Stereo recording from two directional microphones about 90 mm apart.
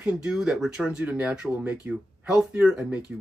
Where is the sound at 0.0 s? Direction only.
10° right (ahead or behind).